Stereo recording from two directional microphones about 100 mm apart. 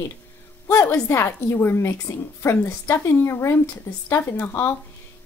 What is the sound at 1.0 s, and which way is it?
Speech, 25° left (ahead or behind).